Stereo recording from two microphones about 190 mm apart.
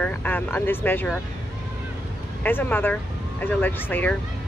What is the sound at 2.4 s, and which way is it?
Speech, 10° left (ahead or behind).